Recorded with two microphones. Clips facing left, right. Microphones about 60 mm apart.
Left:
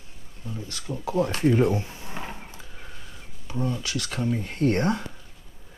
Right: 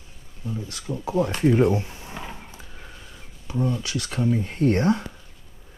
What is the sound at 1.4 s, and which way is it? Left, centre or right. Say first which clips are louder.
Speech: right 2 dB; centre.